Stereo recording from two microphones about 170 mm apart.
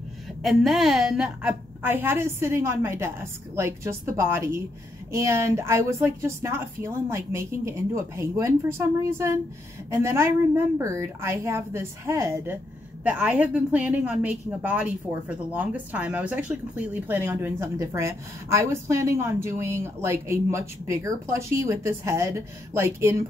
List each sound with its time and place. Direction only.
0.4 s speech: centre (ahead or behind); by 23.2 s 15° right (ahead or behind)